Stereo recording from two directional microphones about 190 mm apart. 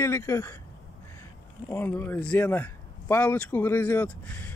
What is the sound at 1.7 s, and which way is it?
Speech, 10° left (ahead or behind).